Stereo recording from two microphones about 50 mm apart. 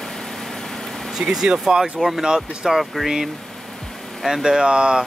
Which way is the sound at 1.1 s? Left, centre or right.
Centre.